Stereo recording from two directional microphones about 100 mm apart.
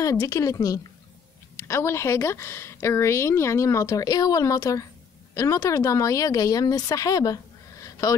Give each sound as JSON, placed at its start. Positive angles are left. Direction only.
{"t": 0.0, "sound": "a woman's voice", "side_deg": 35}